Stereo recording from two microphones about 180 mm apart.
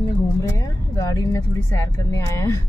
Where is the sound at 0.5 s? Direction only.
20° left (ahead or behind).